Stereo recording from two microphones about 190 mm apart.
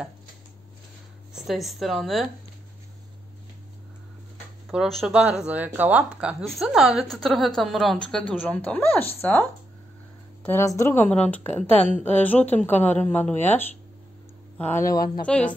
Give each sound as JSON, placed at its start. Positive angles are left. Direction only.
{"t": 1.3, "sound": "speech", "side_deg": 0}
{"t": 4.6, "sound": "speech", "side_deg": -5}
{"t": 15.2, "sound": "speech", "side_deg": 5}